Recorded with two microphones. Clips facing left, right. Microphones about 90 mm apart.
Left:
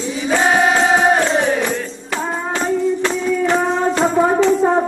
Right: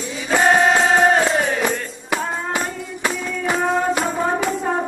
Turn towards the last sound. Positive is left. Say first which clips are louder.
# left 6 dB
turn(degrees=-10)  # may be behind; listen again after turning